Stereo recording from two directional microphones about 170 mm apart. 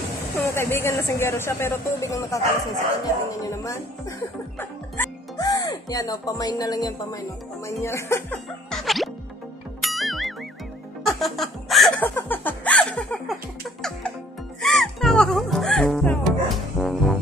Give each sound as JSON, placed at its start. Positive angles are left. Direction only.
{"t": 0.5, "sound": "speech", "side_deg": 15}
{"t": 4.6, "sound": "speech", "side_deg": 15}
{"t": 8.6, "sound": "music", "side_deg": 0}
{"t": 12.2, "sound": "speech", "side_deg": 10}
{"t": 14.6, "sound": "speech", "side_deg": 0}